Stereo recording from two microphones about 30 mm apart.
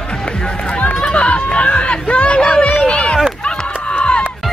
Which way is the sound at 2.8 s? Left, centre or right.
Left.